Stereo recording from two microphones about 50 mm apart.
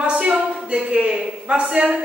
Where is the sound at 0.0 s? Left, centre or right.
Right.